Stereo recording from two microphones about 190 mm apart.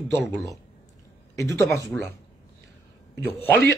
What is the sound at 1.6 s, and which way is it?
Speech, 10° left (ahead or behind).